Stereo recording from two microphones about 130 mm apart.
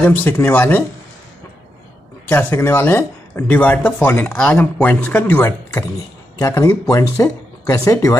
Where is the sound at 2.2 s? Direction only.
15° left (ahead or behind).